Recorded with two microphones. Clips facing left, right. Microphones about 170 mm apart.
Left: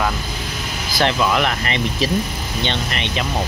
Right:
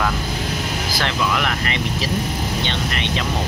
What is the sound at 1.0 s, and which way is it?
Speech, 25° left (ahead or behind).